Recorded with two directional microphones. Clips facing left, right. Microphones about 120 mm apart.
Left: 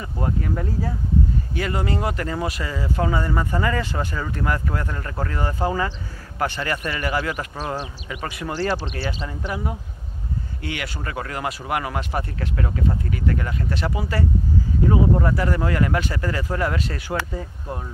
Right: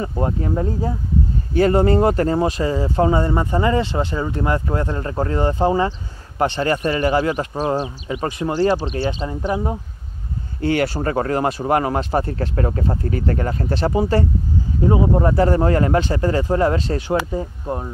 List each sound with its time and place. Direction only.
0.0 s speech: 25° right (ahead or behind)
9.2 s speech: 35° right (ahead or behind)